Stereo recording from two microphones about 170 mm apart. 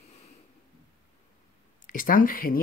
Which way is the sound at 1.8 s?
55° left (ahead or behind).